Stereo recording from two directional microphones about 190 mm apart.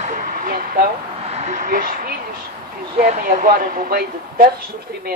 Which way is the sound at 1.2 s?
35° right (ahead or behind).